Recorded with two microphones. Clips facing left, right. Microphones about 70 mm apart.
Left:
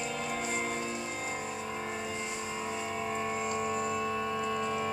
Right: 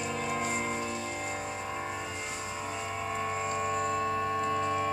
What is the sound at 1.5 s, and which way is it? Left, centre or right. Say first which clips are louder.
Vehicle: right 1 dB; centre.